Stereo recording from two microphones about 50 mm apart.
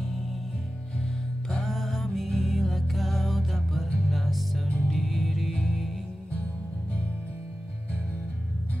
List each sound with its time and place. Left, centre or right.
1.5 s music: centre
5.5 s music: centre